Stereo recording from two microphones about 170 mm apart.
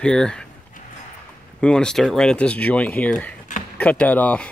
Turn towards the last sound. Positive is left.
turn(degrees=10)  # may be behind; listen again after turning